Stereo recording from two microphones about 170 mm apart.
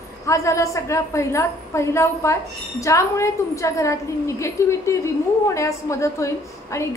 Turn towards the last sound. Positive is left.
turn(degrees=15)  # may be behind; listen again after turning